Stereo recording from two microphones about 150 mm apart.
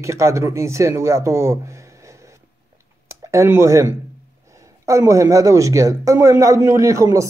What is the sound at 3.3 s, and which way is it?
Speech, 20° right (ahead or behind).